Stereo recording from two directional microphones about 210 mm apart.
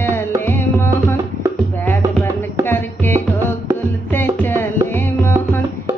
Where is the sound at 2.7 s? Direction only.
10° left (ahead or behind).